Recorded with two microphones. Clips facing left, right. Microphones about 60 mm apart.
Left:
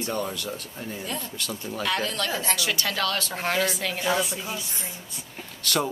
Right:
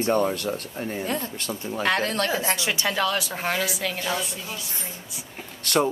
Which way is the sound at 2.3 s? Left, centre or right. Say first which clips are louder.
Right 2 dB; right.